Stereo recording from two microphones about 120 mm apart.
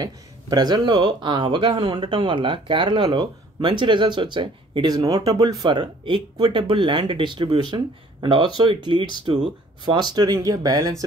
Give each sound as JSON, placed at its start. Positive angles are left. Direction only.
{"t": 0.0, "sound": "speech", "side_deg": -35}